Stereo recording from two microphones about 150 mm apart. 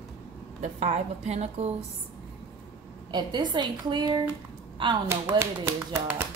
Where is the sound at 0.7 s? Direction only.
50° right (ahead or behind).